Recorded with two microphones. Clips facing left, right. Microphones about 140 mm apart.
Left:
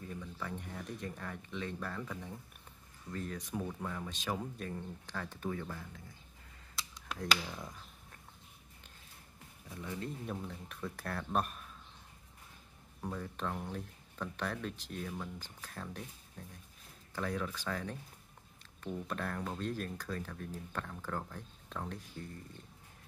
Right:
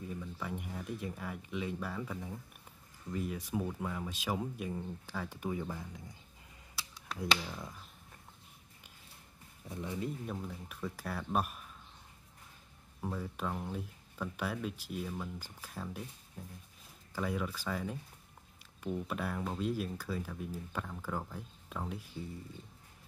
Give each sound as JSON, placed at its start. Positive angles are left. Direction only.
{"t": 0.0, "sound": "speech", "side_deg": -10}
{"t": 6.9, "sound": "a sound", "side_deg": -10}
{"t": 7.4, "sound": "speech", "side_deg": -5}
{"t": 9.7, "sound": "speech", "side_deg": -20}
{"t": 10.2, "sound": "speech", "side_deg": 0}
{"t": 13.0, "sound": "speech", "side_deg": -5}